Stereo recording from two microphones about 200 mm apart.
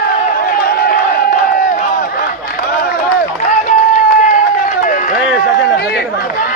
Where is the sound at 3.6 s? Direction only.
40° left (ahead or behind).